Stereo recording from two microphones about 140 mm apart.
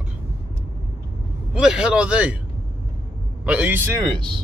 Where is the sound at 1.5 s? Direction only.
5° right (ahead or behind).